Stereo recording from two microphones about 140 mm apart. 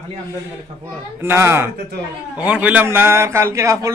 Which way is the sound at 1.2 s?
15° right (ahead or behind).